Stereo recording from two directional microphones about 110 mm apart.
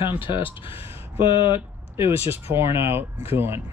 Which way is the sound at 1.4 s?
20° right (ahead or behind).